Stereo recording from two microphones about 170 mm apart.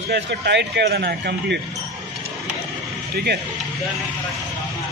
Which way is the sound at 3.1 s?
70° right (ahead or behind).